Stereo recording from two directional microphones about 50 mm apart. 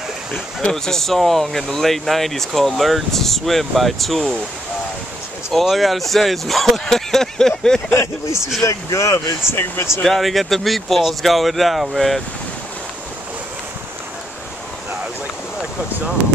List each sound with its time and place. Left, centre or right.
0.6 s speech: centre
5.5 s speech: centre
7.9 s speech: left
8.6 s speech: left
10.0 s speech: centre